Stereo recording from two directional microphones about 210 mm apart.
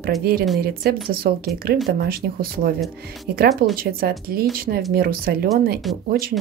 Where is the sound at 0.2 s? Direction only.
45° right (ahead or behind).